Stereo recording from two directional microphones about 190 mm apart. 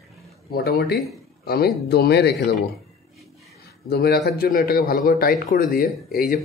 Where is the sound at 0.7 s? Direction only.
55° left (ahead or behind).